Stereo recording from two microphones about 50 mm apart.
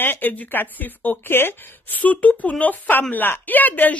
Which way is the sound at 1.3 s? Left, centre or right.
Left.